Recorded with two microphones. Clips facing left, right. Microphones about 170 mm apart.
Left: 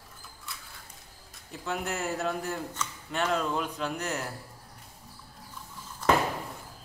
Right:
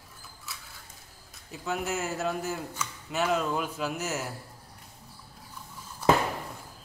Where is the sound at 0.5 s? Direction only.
Centre (ahead or behind).